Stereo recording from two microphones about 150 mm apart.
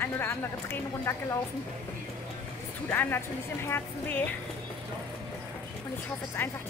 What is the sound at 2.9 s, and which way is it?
Speech, 15° left (ahead or behind).